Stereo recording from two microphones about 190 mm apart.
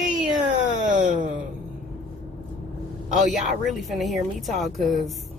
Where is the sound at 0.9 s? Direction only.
45° right (ahead or behind).